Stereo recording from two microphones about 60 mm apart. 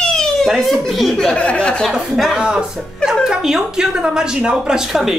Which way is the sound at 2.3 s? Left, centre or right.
Centre.